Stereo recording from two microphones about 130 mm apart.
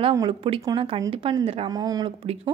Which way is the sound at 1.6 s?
30° right (ahead or behind).